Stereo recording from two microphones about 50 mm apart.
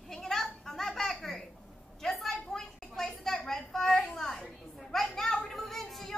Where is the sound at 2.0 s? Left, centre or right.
Centre.